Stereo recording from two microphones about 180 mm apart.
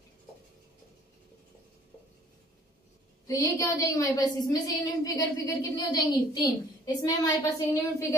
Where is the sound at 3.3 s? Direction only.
20° left (ahead or behind).